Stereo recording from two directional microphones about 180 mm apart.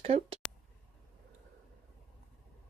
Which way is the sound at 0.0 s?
30° right (ahead or behind).